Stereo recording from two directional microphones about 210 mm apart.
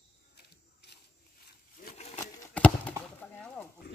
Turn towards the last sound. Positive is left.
turn(degrees=10)  # may be behind; listen again after turning